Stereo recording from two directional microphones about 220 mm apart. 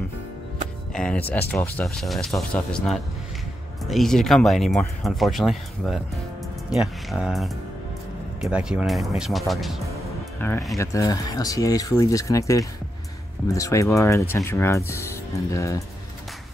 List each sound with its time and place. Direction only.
0.9 s speech: 5° left (ahead or behind)
10.4 s speech: 10° left (ahead or behind)